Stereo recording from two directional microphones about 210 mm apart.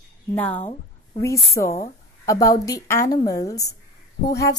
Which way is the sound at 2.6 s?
15° left (ahead or behind).